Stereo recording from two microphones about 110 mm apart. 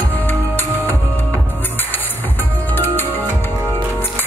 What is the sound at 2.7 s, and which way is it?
Music, 20° left (ahead or behind).